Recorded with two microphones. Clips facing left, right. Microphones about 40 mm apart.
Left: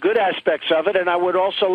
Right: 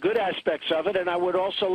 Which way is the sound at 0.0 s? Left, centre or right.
Left.